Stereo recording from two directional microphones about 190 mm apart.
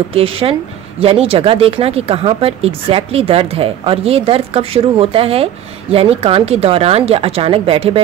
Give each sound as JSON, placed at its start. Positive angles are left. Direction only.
{"t": 0.1, "sound": "speech", "side_deg": -30}